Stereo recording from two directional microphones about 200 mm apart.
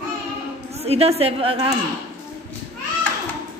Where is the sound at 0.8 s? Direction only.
30° right (ahead or behind).